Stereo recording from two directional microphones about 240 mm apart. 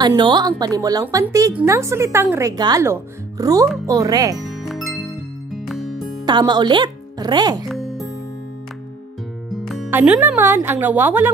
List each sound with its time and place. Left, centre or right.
0.0 s a woman's voice: centre
4.5 s music: centre
6.2 s speech: centre
7.6 s music: centre
9.5 s speech: centre